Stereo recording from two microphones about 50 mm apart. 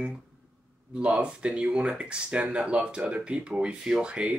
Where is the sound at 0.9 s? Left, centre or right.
Right.